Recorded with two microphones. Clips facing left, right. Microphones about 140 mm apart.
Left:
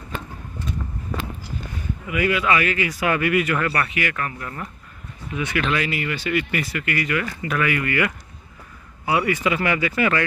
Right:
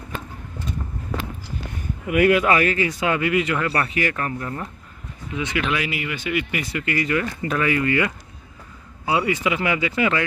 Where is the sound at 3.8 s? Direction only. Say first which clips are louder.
Right 2 dB; 35° right (ahead or behind).